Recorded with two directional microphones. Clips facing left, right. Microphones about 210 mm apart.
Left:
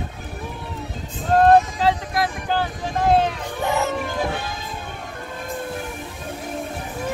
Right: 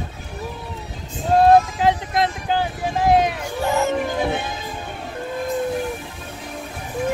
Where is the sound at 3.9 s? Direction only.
15° right (ahead or behind).